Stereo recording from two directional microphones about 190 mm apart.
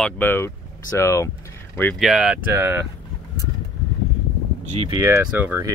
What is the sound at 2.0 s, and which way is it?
Speech, 5° right (ahead or behind).